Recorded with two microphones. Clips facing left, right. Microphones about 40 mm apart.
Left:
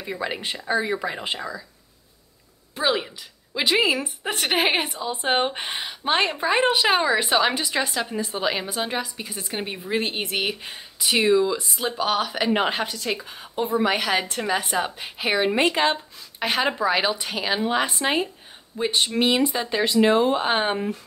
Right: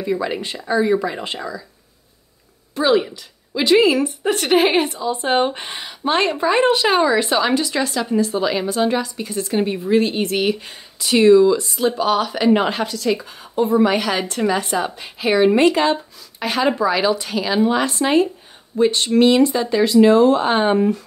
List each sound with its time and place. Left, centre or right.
0.0 s a woman's voice: centre
2.7 s a woman's voice: centre